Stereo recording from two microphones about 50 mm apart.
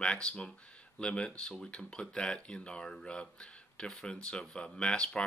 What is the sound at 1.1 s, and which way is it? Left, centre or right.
Speech, left.